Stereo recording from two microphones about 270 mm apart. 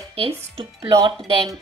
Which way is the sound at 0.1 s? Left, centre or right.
Right.